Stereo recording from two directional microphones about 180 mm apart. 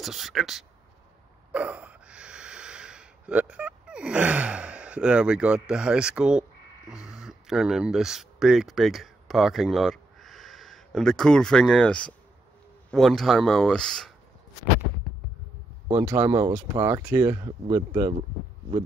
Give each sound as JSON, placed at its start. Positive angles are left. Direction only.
{"t": 0.0, "sound": "speech", "side_deg": 0}
{"t": 1.5, "sound": "a sound", "side_deg": -5}
{"t": 7.1, "sound": "speech", "side_deg": -5}
{"t": 15.9, "sound": "speech", "side_deg": -10}